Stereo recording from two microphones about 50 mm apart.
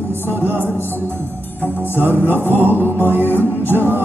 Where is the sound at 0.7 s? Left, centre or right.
Left.